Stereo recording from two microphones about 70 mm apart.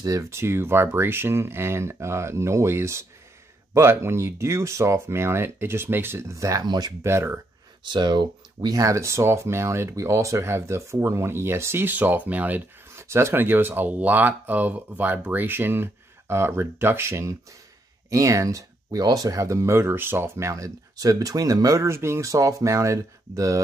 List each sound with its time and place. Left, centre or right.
0.0 s speech: right
6.3 s speech: right
7.0 s speech: right
7.8 s speech: right
12.9 s speech: right
21.8 s speech: right
22.3 s speech: right